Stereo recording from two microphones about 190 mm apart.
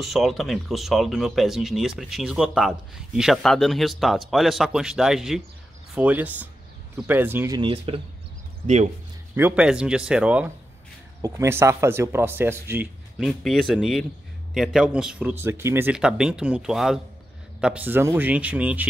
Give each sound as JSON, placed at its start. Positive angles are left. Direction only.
{"t": 0.0, "sound": "speech", "side_deg": 0}
{"t": 7.6, "sound": "speech", "side_deg": -30}
{"t": 9.3, "sound": "speech", "side_deg": -10}
{"t": 13.2, "sound": "speech", "side_deg": 0}